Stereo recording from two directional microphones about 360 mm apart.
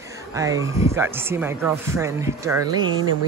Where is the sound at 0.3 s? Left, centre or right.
Centre.